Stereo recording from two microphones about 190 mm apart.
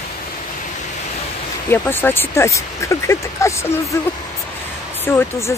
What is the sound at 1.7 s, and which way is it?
Speech, 10° left (ahead or behind).